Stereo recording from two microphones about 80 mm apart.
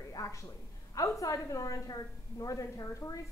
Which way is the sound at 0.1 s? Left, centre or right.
Left.